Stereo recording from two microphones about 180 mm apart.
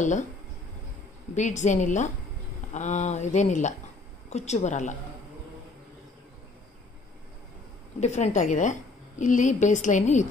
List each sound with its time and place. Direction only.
0.0 s a woman's voice: 45° left (ahead or behind)
1.3 s a woman's voice: 40° left (ahead or behind)
8.0 s a woman's voice: 40° left (ahead or behind)